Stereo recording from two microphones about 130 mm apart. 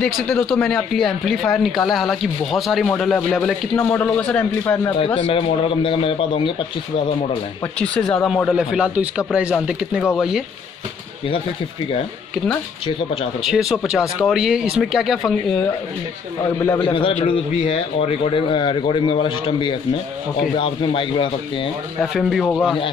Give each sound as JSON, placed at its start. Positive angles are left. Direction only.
{"t": 0.0, "sound": "a man's voice", "side_deg": 5}
{"t": 5.0, "sound": "speech", "side_deg": 40}
{"t": 7.8, "sound": "speech", "side_deg": 10}
{"t": 12.8, "sound": "speech", "side_deg": 45}
{"t": 13.4, "sound": "speech", "side_deg": -5}
{"t": 16.8, "sound": "a man's voice", "side_deg": 40}
{"t": 22.0, "sound": "speech", "side_deg": 0}